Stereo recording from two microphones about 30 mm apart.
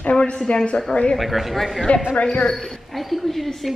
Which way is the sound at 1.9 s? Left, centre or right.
Left.